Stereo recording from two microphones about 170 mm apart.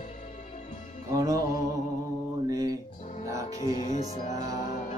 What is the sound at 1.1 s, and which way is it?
Music, 20° right (ahead or behind).